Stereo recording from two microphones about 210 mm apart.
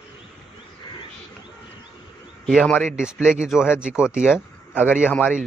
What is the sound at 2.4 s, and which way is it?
A man's voice, centre (ahead or behind).